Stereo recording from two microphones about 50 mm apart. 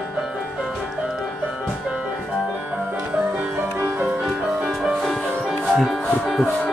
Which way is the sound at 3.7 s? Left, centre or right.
Right.